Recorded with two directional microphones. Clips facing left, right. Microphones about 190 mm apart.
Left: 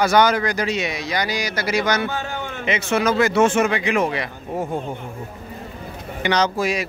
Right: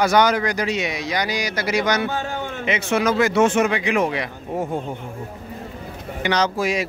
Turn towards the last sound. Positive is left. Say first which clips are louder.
# left 1 dB
turn(degrees=-5)  # may be behind; listen again after turning